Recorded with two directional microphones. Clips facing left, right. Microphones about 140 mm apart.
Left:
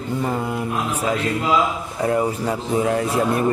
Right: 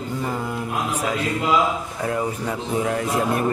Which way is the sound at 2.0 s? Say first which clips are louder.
Left 5 dB; 30° left (ahead or behind).